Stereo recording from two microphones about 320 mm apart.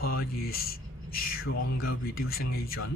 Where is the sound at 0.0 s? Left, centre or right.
Left.